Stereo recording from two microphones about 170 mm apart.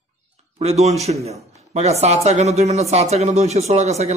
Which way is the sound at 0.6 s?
40° right (ahead or behind).